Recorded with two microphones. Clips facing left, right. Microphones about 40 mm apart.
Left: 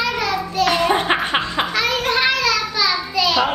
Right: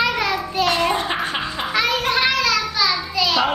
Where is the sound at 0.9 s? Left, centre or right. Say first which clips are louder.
Left 4 dB; left.